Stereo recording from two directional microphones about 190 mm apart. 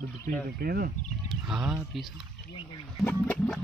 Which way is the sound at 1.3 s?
5° right (ahead or behind).